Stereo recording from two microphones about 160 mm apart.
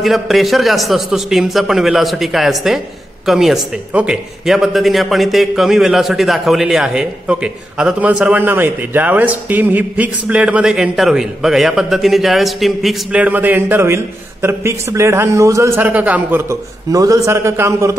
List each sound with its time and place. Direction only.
0.0 s a man's voice: centre (ahead or behind); by 17.9 s 20° right (ahead or behind)